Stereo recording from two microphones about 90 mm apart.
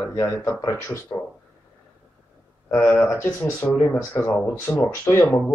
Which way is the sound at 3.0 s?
25° left (ahead or behind).